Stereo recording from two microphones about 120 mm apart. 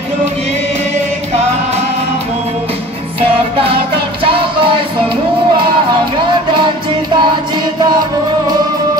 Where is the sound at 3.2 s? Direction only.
50° right (ahead or behind).